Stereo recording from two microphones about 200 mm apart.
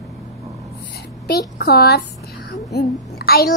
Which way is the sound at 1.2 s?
55° left (ahead or behind).